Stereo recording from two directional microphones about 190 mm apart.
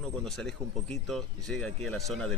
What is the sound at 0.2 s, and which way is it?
Speech, 5° left (ahead or behind).